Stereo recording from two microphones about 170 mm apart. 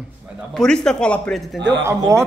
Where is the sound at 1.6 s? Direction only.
90° right.